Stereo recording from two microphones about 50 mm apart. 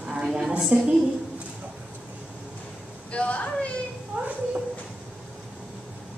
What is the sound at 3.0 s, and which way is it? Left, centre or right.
Speech, left.